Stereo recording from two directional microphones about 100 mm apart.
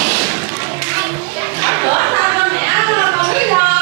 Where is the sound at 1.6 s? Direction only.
25° right (ahead or behind).